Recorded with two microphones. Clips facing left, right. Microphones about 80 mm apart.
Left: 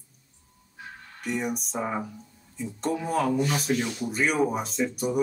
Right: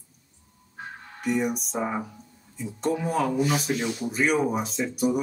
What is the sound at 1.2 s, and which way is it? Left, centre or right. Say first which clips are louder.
Speech: right 4 dB; centre.